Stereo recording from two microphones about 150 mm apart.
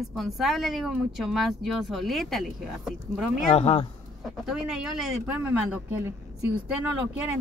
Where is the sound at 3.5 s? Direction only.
40° left (ahead or behind).